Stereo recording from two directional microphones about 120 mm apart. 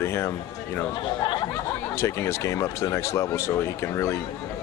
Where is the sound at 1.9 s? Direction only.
20° left (ahead or behind).